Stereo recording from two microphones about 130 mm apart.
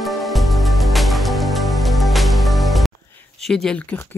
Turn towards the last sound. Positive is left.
turn(degrees=10)  # may be behind; listen again after turning